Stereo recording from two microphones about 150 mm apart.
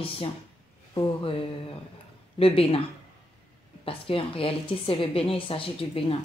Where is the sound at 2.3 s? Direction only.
40° left (ahead or behind).